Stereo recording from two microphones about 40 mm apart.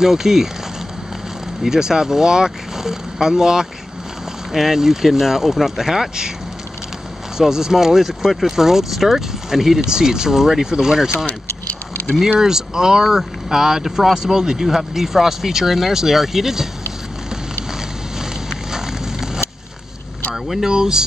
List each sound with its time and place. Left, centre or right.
0.0 s speech: centre
1.6 s speech: centre
7.3 s speech: centre
12.4 s speech: centre
18.7 s fire: centre
20.6 s speech: centre